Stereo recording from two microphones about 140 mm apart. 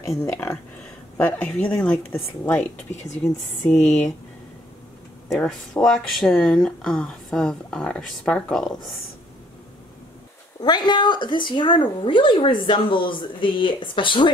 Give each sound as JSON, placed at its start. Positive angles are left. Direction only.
{"t": 0.2, "sound": "a woman's voice", "side_deg": 20}
{"t": 3.7, "sound": "speech", "side_deg": 55}
{"t": 5.3, "sound": "speech", "side_deg": 5}
{"t": 10.6, "sound": "speech", "side_deg": 30}